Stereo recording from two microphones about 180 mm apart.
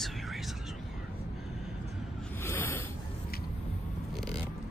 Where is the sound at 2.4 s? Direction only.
15° left (ahead or behind).